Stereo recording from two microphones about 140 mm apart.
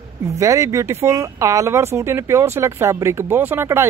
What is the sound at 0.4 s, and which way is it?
Speech, 25° right (ahead or behind).